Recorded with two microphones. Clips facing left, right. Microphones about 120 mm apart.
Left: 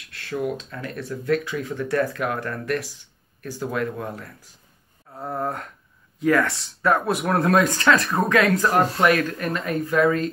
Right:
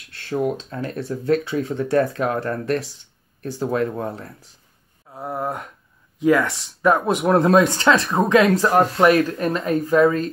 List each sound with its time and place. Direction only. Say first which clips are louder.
0.1 s speech: right 4 dB; 30° right (ahead or behind)
5.1 s a sound: right 1 dB; 10° right (ahead or behind)
6.1 s speech: right 3 dB; 15° right (ahead or behind)